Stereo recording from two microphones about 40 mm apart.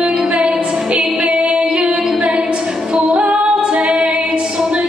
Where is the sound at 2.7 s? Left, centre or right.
Right.